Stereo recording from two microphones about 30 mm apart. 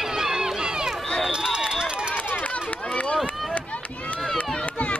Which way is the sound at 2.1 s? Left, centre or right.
Left.